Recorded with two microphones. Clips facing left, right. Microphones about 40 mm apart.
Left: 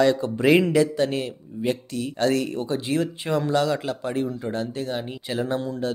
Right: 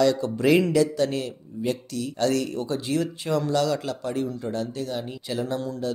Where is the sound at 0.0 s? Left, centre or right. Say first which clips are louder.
Left 2 dB; left.